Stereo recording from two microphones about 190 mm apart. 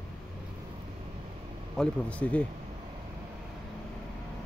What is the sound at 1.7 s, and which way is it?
Speech, 5° left (ahead or behind).